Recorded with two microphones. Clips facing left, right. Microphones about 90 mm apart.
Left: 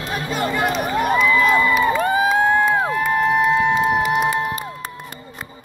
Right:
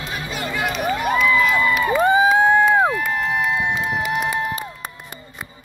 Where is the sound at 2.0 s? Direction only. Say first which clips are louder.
Right 2 dB; 20° right (ahead or behind).